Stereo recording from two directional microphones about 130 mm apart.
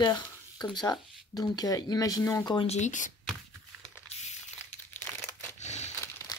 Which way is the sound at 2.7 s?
70° left (ahead or behind).